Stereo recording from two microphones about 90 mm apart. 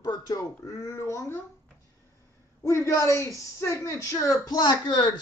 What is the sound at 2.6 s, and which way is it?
Speech, 30° left (ahead or behind).